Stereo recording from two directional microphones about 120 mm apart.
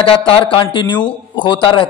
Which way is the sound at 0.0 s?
50° left (ahead or behind).